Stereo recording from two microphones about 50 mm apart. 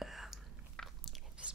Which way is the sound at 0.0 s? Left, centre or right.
Centre.